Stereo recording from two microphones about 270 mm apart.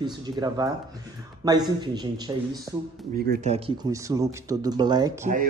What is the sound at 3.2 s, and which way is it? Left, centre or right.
Speech, right.